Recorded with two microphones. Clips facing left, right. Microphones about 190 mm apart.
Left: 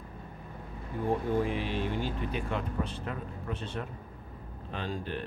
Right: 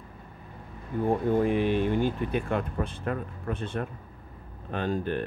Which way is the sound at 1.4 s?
50° right (ahead or behind).